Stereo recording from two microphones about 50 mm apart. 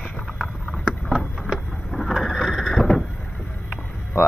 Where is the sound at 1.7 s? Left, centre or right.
Centre.